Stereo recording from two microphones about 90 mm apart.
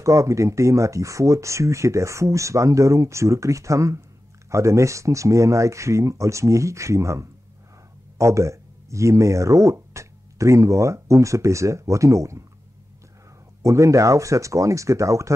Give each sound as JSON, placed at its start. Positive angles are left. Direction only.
{"t": 0.0, "sound": "speech", "side_deg": -35}
{"t": 13.6, "sound": "speech", "side_deg": -35}